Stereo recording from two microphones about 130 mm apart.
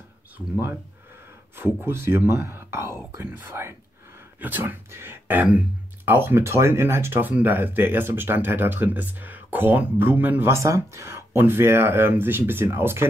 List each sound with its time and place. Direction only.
1.6 s speech: 20° right (ahead or behind)